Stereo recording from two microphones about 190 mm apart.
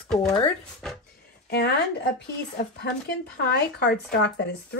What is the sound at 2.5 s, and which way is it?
Speech, 55° left (ahead or behind).